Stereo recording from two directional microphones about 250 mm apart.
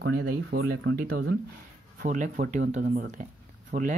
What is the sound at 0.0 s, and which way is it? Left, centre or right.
Speech, right.